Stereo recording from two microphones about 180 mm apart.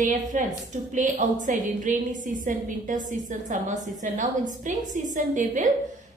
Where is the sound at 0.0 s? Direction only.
45° right (ahead or behind).